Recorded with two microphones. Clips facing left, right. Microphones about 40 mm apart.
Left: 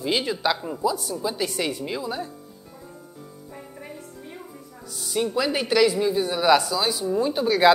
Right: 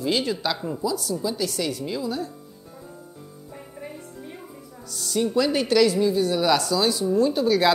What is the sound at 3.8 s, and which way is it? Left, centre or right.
Music, centre.